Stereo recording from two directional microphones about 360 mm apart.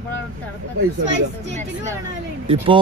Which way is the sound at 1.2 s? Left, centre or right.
Right.